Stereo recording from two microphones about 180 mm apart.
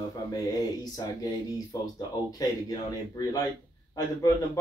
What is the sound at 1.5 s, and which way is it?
A man's voice, 20° left (ahead or behind).